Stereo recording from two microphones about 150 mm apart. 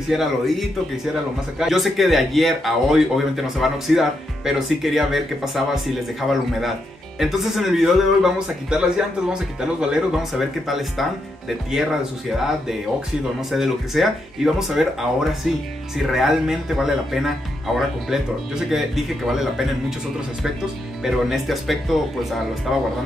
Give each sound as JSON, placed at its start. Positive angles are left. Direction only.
{"t": 0.1, "sound": "speech", "side_deg": 0}
{"t": 7.2, "sound": "speech", "side_deg": 0}
{"t": 21.0, "sound": "speech", "side_deg": 0}